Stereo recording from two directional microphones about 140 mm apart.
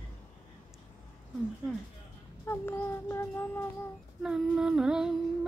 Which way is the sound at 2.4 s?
15° left (ahead or behind).